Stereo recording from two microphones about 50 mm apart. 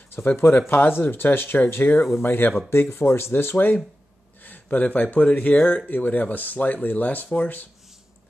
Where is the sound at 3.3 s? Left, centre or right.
Left.